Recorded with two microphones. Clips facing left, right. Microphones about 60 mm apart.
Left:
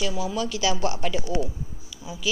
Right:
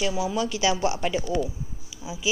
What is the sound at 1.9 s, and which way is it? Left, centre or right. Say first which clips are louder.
Bee: right 1 dB; centre.